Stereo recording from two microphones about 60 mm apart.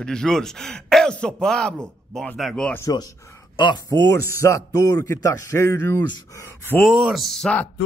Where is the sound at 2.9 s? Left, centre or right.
Left.